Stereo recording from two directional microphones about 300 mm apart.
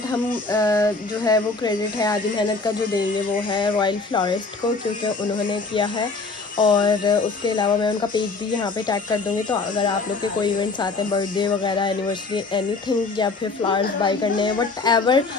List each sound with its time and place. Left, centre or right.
0.5 s speech: centre
3.4 s speech: centre